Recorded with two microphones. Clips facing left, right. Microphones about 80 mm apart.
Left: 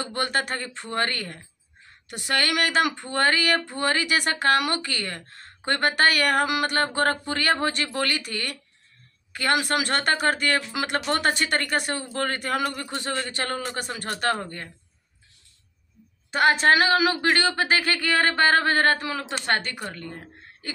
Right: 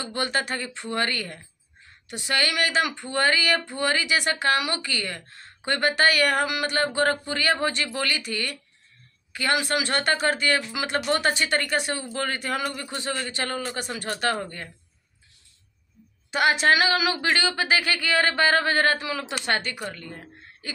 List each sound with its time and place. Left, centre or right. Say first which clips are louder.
0.0 s speech: left 1 dB; left
16.3 s speech: left 1 dB; left